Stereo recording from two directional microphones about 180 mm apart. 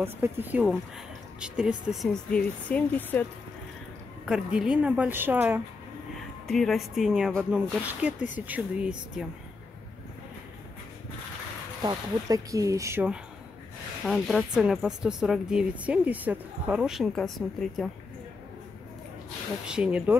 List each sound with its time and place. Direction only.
0.0 s speech: 10° right (ahead or behind); by 3.3 s 10° left (ahead or behind)
4.3 s speech: 5° right (ahead or behind)
6.4 s speech: centre (ahead or behind)
11.8 s speech: 20° right (ahead or behind)
14.0 s speech: centre (ahead or behind)
19.7 s speech: 5° right (ahead or behind)